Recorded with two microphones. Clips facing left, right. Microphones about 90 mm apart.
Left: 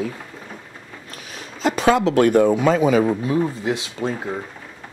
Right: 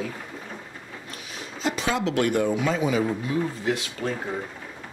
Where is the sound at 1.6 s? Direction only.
50° left (ahead or behind).